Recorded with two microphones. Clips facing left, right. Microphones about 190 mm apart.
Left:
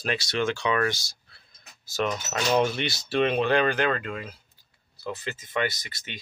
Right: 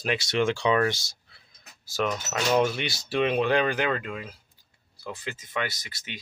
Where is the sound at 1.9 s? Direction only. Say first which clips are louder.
Even; 10° right (ahead or behind).